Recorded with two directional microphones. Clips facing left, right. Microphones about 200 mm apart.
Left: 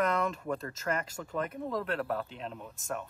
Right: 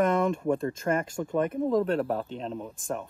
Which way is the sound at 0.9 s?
20° right (ahead or behind).